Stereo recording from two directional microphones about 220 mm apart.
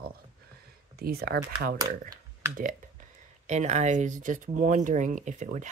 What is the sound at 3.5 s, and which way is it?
Speech, 30° right (ahead or behind).